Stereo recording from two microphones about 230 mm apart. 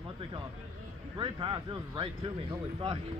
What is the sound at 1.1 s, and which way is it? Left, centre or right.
Speech, centre.